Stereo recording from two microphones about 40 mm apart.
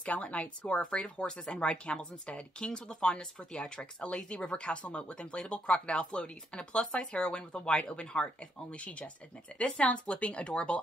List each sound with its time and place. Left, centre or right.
0.0 s speech: left